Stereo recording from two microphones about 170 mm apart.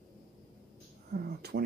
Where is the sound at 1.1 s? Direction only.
65° right (ahead or behind).